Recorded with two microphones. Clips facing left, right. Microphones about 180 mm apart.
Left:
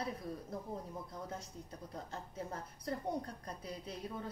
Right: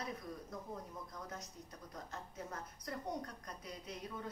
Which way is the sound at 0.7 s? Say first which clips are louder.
Left 3 dB; 30° left (ahead or behind).